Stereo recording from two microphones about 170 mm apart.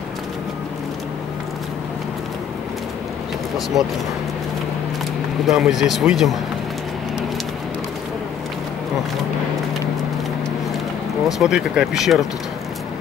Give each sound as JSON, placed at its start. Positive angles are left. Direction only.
{"t": 5.5, "sound": "speech", "side_deg": 0}
{"t": 11.3, "sound": "speech", "side_deg": -5}